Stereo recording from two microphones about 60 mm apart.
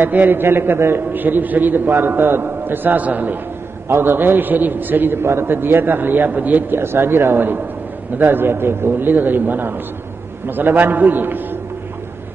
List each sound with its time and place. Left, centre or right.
0.0 s a man's voice: right
3.9 s a man's voice: right
6.8 s a man's voice: right